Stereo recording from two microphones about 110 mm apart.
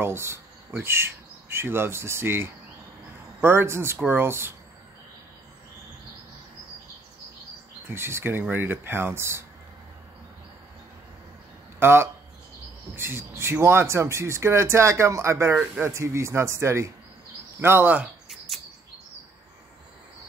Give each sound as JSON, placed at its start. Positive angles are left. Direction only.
{"t": 0.0, "sound": "speech", "side_deg": -20}
{"t": 7.9, "sound": "speech", "side_deg": -20}
{"t": 11.8, "sound": "speech", "side_deg": -20}
{"t": 15.6, "sound": "speech", "side_deg": -10}
{"t": 15.9, "sound": "speech", "side_deg": -25}